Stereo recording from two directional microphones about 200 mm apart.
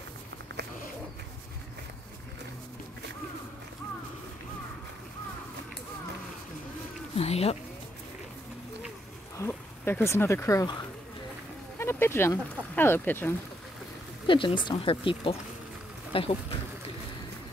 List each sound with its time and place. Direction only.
7.2 s speech: 30° left (ahead or behind)
9.4 s speech: 10° left (ahead or behind)
14.2 s speech: 25° left (ahead or behind)